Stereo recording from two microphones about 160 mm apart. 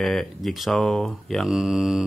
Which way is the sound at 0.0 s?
Centre (ahead or behind).